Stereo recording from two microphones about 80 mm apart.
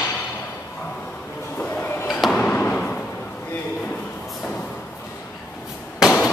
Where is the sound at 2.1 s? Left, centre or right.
Centre.